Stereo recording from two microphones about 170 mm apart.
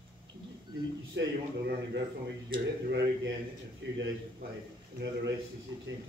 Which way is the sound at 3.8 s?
90° right.